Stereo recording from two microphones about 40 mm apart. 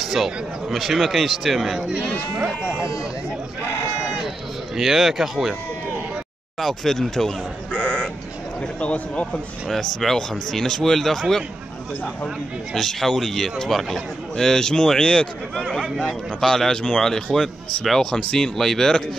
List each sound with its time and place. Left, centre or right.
0.0 s speech: centre
1.9 s speech: right
4.7 s speech: centre
6.6 s speech: centre
7.7 s sheep: left
8.7 s speech: left
9.7 s speech: centre
12.7 s speech: centre
14.3 s speech: centre
16.0 s speech: centre